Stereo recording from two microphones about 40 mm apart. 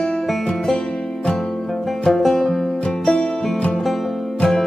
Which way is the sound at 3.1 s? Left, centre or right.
Left.